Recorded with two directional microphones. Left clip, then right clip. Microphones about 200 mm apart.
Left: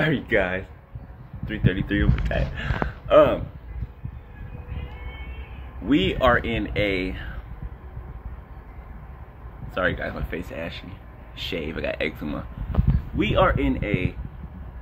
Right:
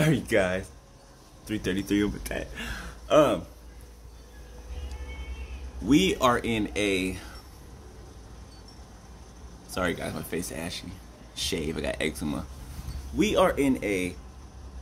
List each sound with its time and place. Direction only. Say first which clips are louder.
0.0 s speech: left 2 dB; 15° right (ahead or behind)
2.2 s speech: left 6 dB; centre (ahead or behind)
3.1 s speech: left 5 dB; 10° right (ahead or behind)
5.9 s speech: left 3 dB; 15° right (ahead or behind)
9.8 s speech: left 5 dB; 15° right (ahead or behind)